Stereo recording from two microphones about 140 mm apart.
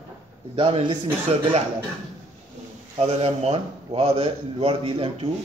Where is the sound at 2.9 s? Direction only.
45° right (ahead or behind).